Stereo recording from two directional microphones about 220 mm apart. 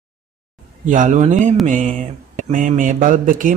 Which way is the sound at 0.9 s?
35° right (ahead or behind).